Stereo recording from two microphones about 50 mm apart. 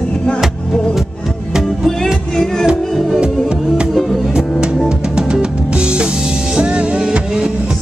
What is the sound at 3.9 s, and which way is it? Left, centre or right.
Music, centre.